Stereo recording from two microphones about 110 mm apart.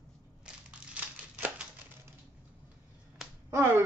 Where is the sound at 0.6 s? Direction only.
10° right (ahead or behind).